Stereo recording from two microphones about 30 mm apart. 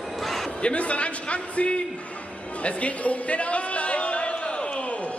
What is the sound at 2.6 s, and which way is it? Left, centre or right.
Music, left.